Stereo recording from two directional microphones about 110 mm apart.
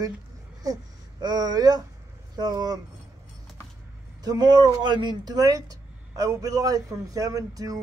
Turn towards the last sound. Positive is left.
turn(degrees=-35)  # may be behind; listen again after turning